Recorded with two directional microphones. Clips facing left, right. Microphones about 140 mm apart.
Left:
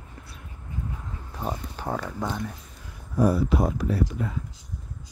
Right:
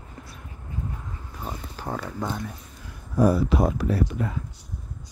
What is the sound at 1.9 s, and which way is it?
Speech, centre (ahead or behind).